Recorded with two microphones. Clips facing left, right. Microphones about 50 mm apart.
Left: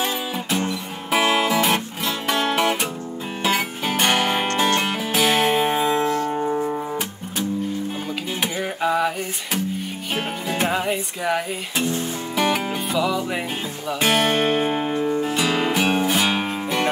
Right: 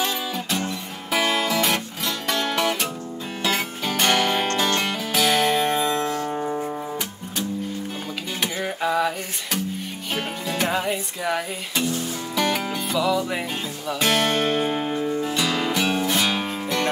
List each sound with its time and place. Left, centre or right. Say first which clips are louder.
0.0 s music: left 1 dB; centre
6.2 s music: left 3 dB; centre
6.5 s music: left 4 dB; centre
8.4 s music: left 1 dB; centre